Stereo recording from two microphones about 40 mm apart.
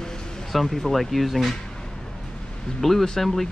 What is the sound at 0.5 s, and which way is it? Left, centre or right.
Speech, centre.